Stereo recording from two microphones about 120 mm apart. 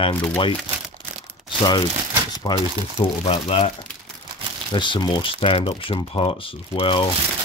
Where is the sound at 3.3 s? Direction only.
50° left (ahead or behind).